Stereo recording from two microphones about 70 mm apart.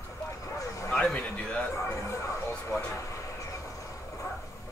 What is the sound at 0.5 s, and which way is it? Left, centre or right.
Bow-wow, left.